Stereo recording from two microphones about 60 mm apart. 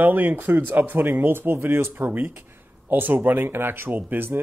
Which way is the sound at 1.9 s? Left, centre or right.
Right.